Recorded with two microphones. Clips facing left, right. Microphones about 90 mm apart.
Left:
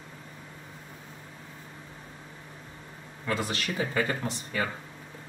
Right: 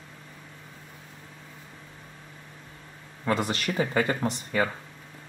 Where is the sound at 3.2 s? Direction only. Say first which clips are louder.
Right 4 dB; 45° right (ahead or behind).